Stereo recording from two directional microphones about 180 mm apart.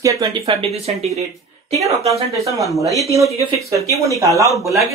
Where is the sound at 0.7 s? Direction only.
35° right (ahead or behind).